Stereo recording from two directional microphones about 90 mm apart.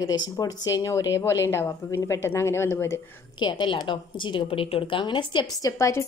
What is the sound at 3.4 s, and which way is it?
A woman's voice, 60° left (ahead or behind).